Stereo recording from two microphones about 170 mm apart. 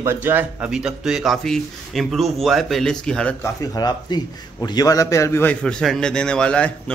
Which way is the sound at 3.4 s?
20° left (ahead or behind).